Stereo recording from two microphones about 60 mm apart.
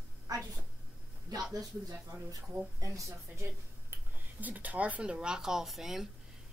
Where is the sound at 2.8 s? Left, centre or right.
Right.